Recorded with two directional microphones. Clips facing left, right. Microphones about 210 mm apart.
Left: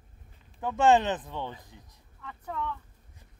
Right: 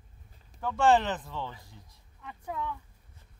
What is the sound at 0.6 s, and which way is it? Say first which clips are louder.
Speech: left 2 dB; 20° left (ahead or behind).